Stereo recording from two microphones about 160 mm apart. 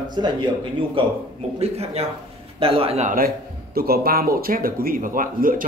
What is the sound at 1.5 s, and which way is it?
Speech, 40° right (ahead or behind).